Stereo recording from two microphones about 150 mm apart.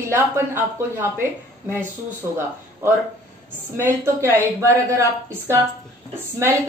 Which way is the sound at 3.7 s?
20° right (ahead or behind).